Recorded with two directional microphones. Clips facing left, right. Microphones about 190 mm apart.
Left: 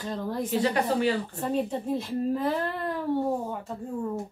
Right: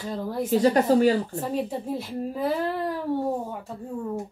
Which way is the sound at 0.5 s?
40° right (ahead or behind).